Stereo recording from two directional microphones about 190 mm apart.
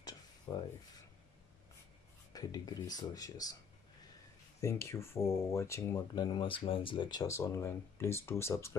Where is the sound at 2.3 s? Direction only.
20° left (ahead or behind).